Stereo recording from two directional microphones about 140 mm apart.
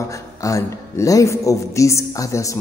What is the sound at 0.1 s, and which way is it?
Speech, 20° left (ahead or behind).